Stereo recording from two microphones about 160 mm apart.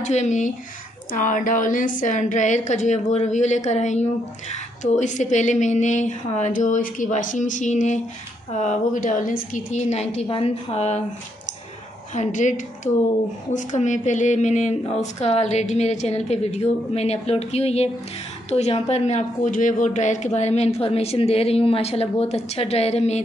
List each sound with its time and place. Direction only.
0.0 s a woman's voice: 45° left (ahead or behind)
12.1 s a woman's voice: 50° left (ahead or behind)